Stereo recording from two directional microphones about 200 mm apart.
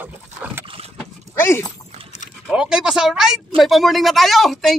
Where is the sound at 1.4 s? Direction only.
10° left (ahead or behind).